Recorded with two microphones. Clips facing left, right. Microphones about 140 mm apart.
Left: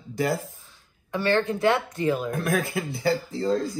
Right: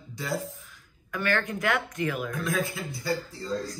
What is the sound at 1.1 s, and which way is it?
A woman's voice, 30° left (ahead or behind).